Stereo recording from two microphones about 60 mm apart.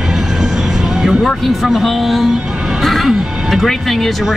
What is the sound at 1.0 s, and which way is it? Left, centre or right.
Music, centre.